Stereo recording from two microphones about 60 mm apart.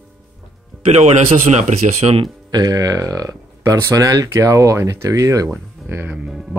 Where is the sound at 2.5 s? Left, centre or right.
Right.